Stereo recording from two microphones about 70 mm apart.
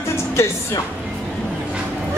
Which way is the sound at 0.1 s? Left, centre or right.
Left.